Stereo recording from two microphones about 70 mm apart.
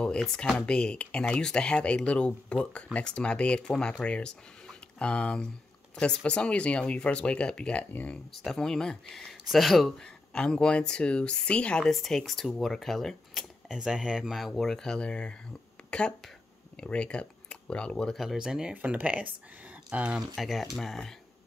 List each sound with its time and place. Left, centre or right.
0.0 s speech: centre
8.3 s speech: centre
10.0 s speech: centre
11.9 s speech: centre
14.5 s speech: centre
18.1 s speech: centre
20.3 s speech: centre